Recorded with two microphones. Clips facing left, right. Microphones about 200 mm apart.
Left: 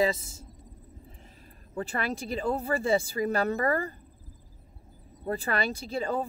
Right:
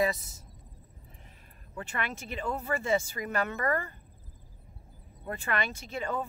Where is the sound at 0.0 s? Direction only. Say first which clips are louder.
Left 3 dB; 25° left (ahead or behind).